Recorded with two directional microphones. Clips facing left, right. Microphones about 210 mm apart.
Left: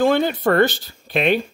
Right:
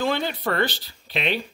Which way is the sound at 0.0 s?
50° left (ahead or behind).